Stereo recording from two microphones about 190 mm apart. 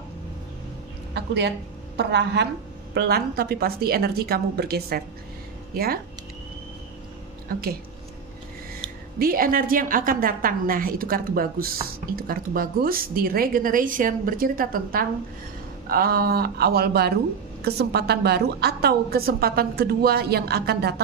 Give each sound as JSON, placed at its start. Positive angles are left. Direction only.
{"t": 1.1, "sound": "a woman's voice", "side_deg": -65}
{"t": 9.2, "sound": "a woman's voice", "side_deg": -50}